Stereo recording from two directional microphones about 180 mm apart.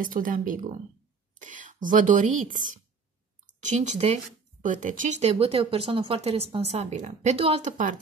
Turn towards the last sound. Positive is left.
turn(degrees=-45)  # may be behind; listen again after turning